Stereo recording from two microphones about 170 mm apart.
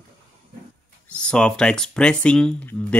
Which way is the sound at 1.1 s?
5° left (ahead or behind).